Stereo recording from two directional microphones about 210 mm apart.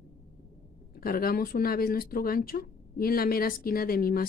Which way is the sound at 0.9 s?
45° left (ahead or behind).